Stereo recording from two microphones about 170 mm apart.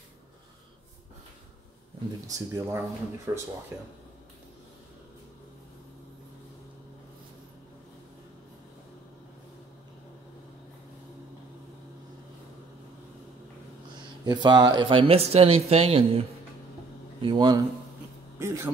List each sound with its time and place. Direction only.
2.2 s speech: 20° right (ahead or behind)
14.2 s speech: 25° right (ahead or behind)
18.4 s a man's voice: 15° right (ahead or behind)